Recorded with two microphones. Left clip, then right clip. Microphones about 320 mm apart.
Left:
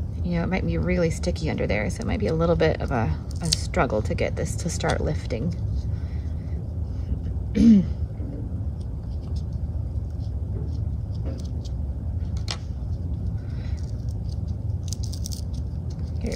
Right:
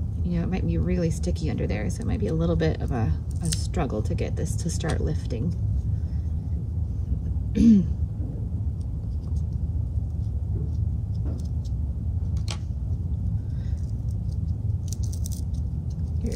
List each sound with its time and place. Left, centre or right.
0.3 s speech: centre
7.5 s speech: centre